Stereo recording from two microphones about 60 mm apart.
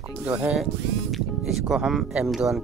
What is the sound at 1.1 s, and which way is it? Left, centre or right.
Speech, centre.